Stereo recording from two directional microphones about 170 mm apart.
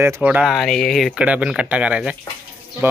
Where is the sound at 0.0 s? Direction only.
10° right (ahead or behind).